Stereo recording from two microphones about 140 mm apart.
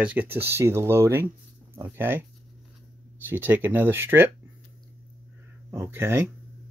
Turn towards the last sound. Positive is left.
turn(degrees=-15)  # may be behind; listen again after turning